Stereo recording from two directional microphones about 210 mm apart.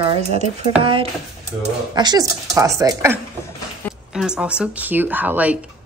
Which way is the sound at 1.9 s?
20° right (ahead or behind).